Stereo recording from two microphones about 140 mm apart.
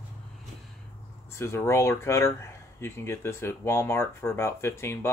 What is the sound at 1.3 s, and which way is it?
Speech, 20° left (ahead or behind).